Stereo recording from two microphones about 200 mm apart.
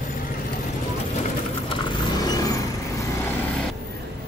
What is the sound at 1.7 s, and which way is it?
Vehicle, 20° left (ahead or behind).